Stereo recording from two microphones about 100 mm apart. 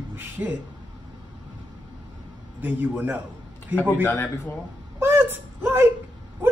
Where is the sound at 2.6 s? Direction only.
20° right (ahead or behind).